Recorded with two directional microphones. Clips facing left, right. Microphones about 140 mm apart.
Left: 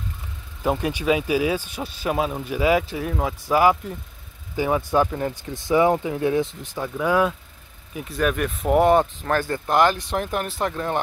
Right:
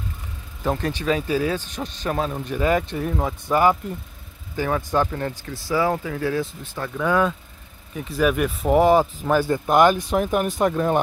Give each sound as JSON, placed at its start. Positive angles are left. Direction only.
{"t": 0.7, "sound": "speech", "side_deg": 10}